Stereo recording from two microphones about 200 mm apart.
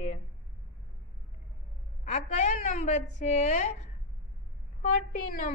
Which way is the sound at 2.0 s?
35° left (ahead or behind).